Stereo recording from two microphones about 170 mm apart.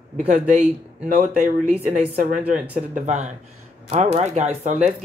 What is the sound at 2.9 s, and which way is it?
Speech, 45° right (ahead or behind).